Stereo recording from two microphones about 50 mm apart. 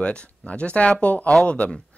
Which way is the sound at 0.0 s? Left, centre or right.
Left.